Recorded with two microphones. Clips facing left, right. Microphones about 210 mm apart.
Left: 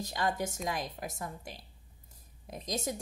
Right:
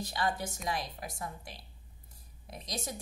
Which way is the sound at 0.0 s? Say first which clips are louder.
Left 1 dB; 45° left (ahead or behind).